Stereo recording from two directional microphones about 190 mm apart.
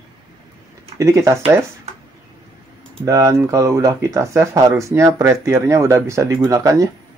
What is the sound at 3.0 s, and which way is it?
Speech, 15° right (ahead or behind).